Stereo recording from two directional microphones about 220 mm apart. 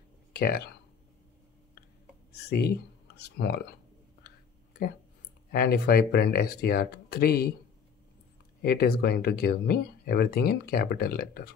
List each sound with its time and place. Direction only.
0.3 s a sound: 45° left (ahead or behind)
3.2 s speech: 45° left (ahead or behind)
5.5 s speech: 45° left (ahead or behind)
8.6 s speech: 45° left (ahead or behind)